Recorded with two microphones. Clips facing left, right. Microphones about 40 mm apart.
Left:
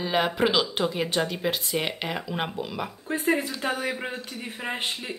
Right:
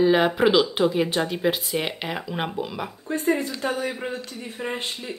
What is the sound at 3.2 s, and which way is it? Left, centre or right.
Speech, left.